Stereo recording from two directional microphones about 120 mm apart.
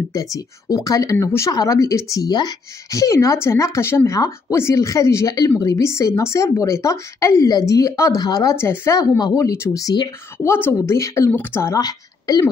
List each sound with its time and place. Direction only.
0.1 s speech: 30° left (ahead or behind)
8.5 s speech: 20° left (ahead or behind)
11.8 s a woman's voice: 35° left (ahead or behind)